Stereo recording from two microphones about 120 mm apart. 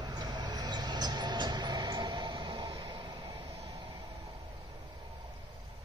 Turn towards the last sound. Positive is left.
turn(degrees=-30)  # may be behind; listen again after turning